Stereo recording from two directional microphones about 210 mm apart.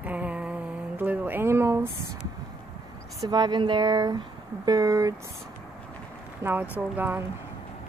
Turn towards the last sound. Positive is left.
turn(degrees=-10)  # may be behind; listen again after turning